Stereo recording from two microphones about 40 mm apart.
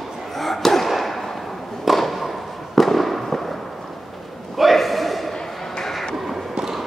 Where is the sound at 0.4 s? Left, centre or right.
Centre.